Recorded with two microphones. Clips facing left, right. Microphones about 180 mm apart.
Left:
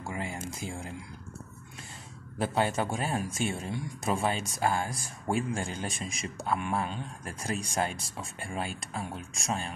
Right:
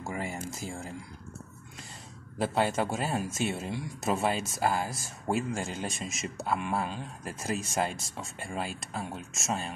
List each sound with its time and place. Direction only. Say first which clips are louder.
0.0 s speech: right 1 dB; centre (ahead or behind)
2.4 s speech: right 1 dB; centre (ahead or behind)